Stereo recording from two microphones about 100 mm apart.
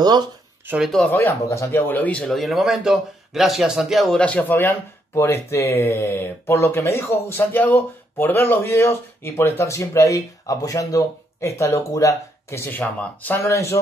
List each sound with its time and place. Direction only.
0.0 s speech: 45° right (ahead or behind)
0.8 s speech: 5° left (ahead or behind)
1.1 s speech: 25° left (ahead or behind)
2.2 s speech: centre (ahead or behind)
4.2 s speech: 15° left (ahead or behind)
13.0 s speech: 15° left (ahead or behind)
13.4 s speech: 25° left (ahead or behind)